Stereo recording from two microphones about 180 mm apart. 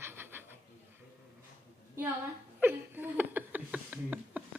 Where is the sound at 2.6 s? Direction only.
10° right (ahead or behind).